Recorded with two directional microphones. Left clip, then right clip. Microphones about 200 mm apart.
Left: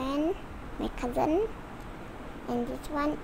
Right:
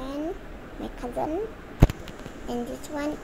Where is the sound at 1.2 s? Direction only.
15° left (ahead or behind).